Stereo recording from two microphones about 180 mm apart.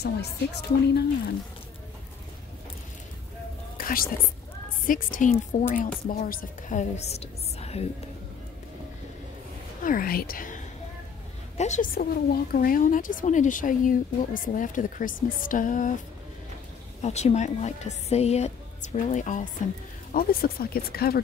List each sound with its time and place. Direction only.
0.0 s speech: 65° left (ahead or behind)
3.7 s whispering: 55° left (ahead or behind)
4.8 s speech: 50° left (ahead or behind)
9.8 s speech: 55° left (ahead or behind)
11.5 s speech: 40° left (ahead or behind)
17.0 s speech: 40° left (ahead or behind)
20.1 s speech: 55° left (ahead or behind)